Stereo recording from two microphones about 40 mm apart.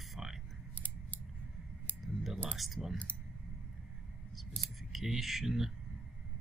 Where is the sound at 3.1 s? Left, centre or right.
Left.